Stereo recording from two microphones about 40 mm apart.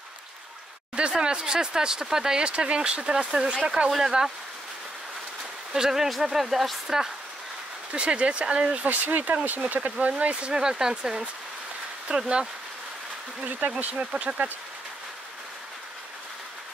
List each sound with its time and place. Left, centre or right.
0.9 s speech: right
5.7 s speech: centre
7.9 s speech: right
8.8 s speech: right
10.0 s speech: right
10.5 s speech: centre
13.6 s speech: right